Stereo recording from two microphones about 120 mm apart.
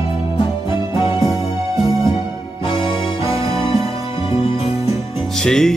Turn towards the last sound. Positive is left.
turn(degrees=5)  # may be behind; listen again after turning